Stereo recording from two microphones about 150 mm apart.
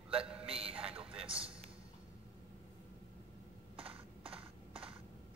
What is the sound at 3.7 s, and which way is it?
Computer keyboard, 40° right (ahead or behind).